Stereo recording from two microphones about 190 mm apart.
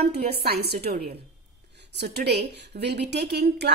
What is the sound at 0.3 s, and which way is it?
A woman's voice, 55° right (ahead or behind).